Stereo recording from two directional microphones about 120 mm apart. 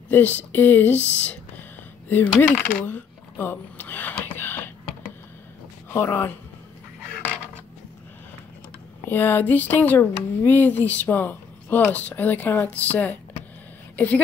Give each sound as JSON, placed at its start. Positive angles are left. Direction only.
{"t": 0.1, "sound": "speech", "side_deg": 15}
{"t": 2.4, "sound": "a sound", "side_deg": 10}
{"t": 5.9, "sound": "speech", "side_deg": 20}
{"t": 7.2, "sound": "coin", "side_deg": 10}
{"t": 9.0, "sound": "a woman's voice", "side_deg": 20}